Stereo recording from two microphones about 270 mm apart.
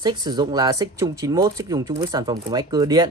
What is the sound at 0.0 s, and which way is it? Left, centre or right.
Speech, centre.